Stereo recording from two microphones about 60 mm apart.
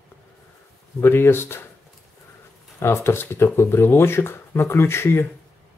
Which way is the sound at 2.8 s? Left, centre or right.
Left.